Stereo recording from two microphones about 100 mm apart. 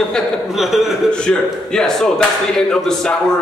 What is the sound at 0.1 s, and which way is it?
Speech, centre (ahead or behind).